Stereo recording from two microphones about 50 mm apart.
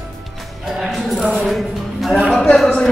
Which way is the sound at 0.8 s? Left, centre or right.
Centre.